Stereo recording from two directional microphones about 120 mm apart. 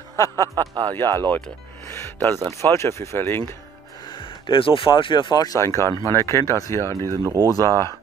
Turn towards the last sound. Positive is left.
turn(degrees=25)  # may be behind; listen again after turning